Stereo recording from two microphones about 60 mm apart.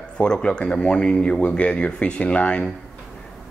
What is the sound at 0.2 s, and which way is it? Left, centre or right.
A man's voice, centre.